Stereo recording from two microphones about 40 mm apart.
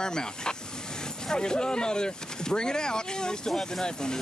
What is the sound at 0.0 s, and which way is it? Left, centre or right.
Speech, centre.